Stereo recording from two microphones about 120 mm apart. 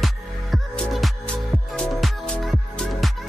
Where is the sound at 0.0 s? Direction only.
Centre (ahead or behind).